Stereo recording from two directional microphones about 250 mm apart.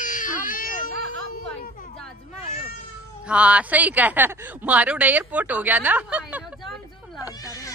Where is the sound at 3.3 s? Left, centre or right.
Centre.